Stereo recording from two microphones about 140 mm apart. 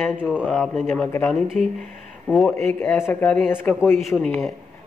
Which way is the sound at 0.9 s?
10° left (ahead or behind).